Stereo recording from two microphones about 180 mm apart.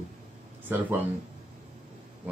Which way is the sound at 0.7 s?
10° right (ahead or behind).